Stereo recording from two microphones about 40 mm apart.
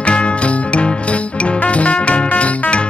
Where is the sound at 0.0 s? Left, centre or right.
Left.